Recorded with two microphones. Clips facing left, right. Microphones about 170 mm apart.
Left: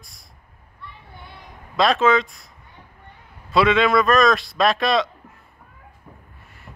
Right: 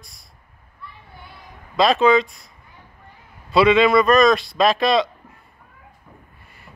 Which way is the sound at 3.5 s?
Centre (ahead or behind).